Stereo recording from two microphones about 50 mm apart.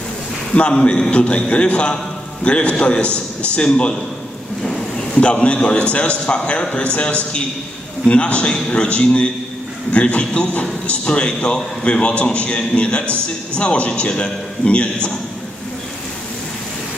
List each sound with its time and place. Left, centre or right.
0.6 s a man's voice: left
4.6 s a man's voice: centre